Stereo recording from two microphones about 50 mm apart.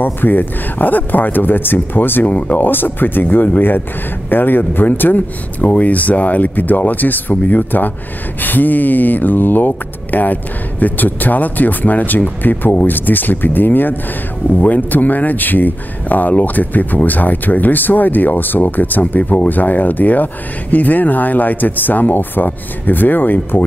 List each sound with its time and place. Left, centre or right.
0.0 s speech: left
2.2 s speech: left